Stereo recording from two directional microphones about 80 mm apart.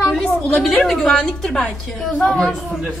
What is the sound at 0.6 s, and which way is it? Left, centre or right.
A woman's voice, centre.